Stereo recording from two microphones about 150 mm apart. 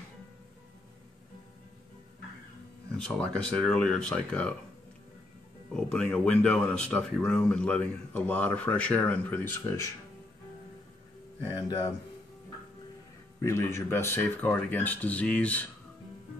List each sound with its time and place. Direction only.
3.0 s speech: 5° left (ahead or behind)
5.7 s speech: 5° left (ahead or behind)
11.5 s speech: 30° left (ahead or behind)
13.4 s speech: 20° left (ahead or behind)